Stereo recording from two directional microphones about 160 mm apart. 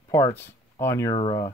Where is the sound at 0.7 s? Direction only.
15° left (ahead or behind).